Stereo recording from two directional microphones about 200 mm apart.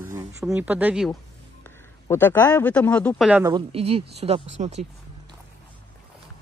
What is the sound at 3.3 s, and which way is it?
A woman's voice, 20° right (ahead or behind).